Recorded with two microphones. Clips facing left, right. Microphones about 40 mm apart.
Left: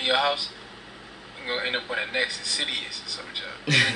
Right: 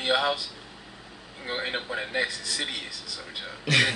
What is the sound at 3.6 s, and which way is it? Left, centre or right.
Speech, centre.